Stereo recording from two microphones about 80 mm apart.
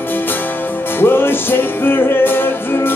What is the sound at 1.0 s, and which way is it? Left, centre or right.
Music, left.